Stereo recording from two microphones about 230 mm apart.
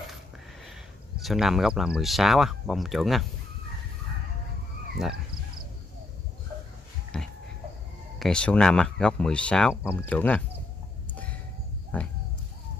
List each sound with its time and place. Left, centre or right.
1.2 s speech: centre
7.1 s a sound: centre
8.2 s speech: centre
11.9 s speech: centre